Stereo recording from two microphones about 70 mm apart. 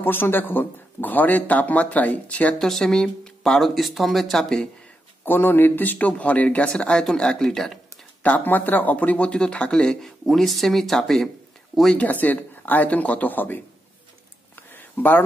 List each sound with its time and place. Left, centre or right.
0.0 s speech: left
2.6 s speech: centre
5.2 s speech: left; by 7.8 s centre
8.2 s speech: left; by 11.2 s centre
11.9 s speech: left
14.5 s a sound: left